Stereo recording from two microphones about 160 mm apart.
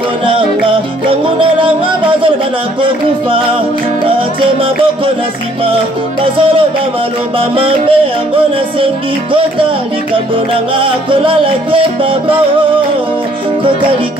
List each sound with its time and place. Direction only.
0.3 s music: 35° right (ahead or behind)
4.6 s music: 35° right (ahead or behind)
7.3 s music: 35° right (ahead or behind)
10.1 s music: 35° right (ahead or behind)